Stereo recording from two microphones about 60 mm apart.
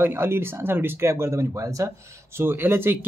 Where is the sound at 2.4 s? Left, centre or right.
Right.